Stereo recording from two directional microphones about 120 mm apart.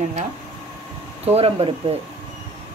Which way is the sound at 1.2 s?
55° right (ahead or behind).